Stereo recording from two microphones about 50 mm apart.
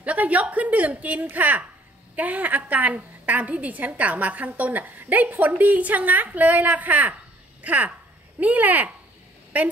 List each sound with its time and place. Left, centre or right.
0.0 s a woman's voice: right